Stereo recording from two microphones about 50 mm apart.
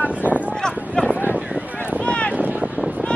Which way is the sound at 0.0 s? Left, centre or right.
Right.